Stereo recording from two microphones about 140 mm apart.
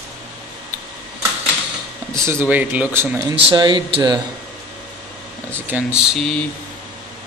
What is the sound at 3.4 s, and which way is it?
Speech, 35° right (ahead or behind).